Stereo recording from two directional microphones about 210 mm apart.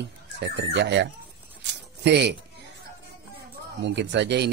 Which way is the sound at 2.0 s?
55° right (ahead or behind).